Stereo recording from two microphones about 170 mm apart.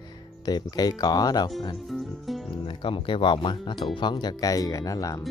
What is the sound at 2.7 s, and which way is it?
Speech, 30° left (ahead or behind).